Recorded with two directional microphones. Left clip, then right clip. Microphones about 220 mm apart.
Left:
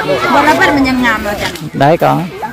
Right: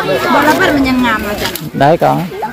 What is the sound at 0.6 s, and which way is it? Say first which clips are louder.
Speech: left 1 dB; 25° left (ahead or behind).